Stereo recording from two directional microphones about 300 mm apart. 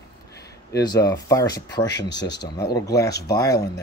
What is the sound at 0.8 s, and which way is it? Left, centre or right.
Speech, centre.